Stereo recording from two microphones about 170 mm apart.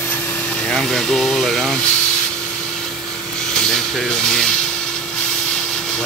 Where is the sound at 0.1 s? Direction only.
10° left (ahead or behind).